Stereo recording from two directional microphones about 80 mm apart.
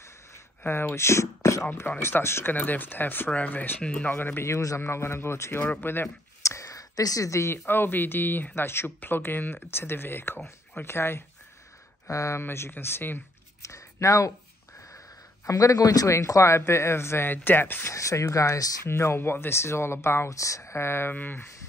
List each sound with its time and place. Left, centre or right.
0.7 s speech: left
1.7 s speech: left
4.6 s speech: left
6.4 s speech: left
12.1 s speech: left
13.6 s a sound: left
15.4 s speech: left
17.9 s speech: left
18.9 s speech: left